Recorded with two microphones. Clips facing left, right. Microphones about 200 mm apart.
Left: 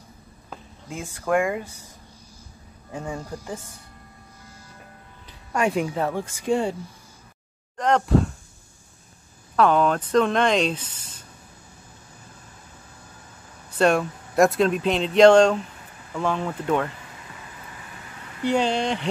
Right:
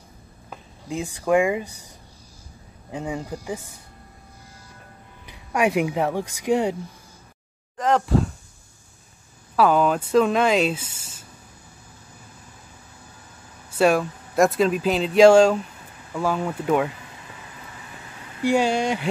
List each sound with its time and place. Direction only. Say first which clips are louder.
0.8 s speech: right 4 dB; 15° right (ahead or behind)
2.9 s speech: right 3 dB; 15° right (ahead or behind)
5.2 s speech: right 2 dB; 10° right (ahead or behind)
7.7 s speech: even; centre (ahead or behind)
9.6 s speech: right 1 dB; 5° right (ahead or behind)
13.7 s speech: right 1 dB; 5° right (ahead or behind)
18.4 s speech: right 2 dB; 10° right (ahead or behind)